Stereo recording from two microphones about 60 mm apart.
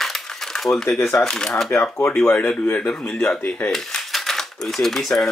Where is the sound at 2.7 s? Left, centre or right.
Centre.